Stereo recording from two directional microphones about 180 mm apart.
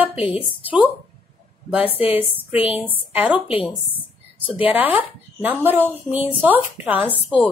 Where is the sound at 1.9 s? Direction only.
35° left (ahead or behind).